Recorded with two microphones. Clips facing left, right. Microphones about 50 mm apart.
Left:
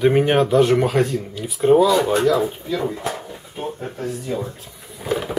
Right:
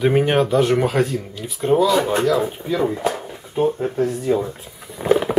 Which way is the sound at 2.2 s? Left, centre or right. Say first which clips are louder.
Left 1 dB; centre.